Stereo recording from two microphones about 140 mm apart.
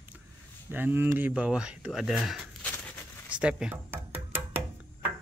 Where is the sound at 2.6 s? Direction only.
10° left (ahead or behind).